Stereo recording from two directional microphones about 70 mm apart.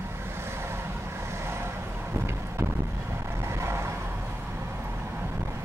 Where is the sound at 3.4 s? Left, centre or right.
Right.